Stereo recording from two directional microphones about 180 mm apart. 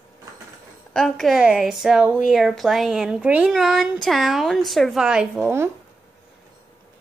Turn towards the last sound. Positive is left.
turn(degrees=-10)  # may be behind; listen again after turning